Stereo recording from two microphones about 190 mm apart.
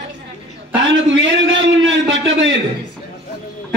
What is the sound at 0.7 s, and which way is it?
Speech, 75° right (ahead or behind).